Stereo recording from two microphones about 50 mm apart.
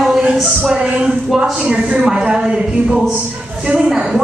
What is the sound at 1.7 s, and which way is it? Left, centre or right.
A woman's voice, right.